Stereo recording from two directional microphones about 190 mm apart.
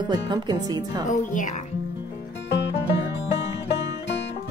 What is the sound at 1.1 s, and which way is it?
Music, 40° left (ahead or behind).